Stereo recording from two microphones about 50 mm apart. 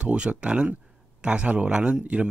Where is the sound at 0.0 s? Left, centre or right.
Right.